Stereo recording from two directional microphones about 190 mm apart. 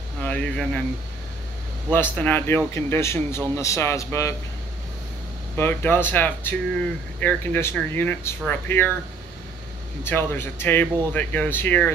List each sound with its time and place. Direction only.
0.2 s speech: 5° left (ahead or behind)
1.9 s speech: 10° left (ahead or behind)
5.6 s speech: 10° left (ahead or behind)
10.0 s speech: 10° left (ahead or behind)